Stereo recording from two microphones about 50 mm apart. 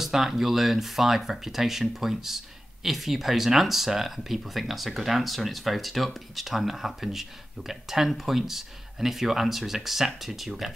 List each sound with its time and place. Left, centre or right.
0.0 s speech: centre